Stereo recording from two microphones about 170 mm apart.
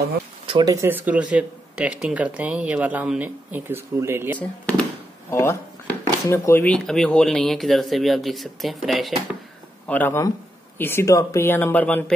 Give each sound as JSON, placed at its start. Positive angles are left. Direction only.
{"t": 0.5, "sound": "speech", "side_deg": -30}
{"t": 0.7, "sound": "speech", "side_deg": -10}
{"t": 4.4, "sound": "speech", "side_deg": 10}
{"t": 9.8, "sound": "speech", "side_deg": 10}